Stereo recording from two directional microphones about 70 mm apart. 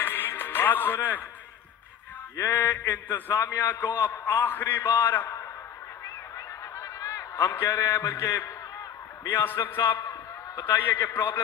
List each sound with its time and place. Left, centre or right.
0.0 s music: left
2.4 s a man's voice: left
6.0 s a sound: left
7.5 s a man's voice: left
9.3 s a man's voice: left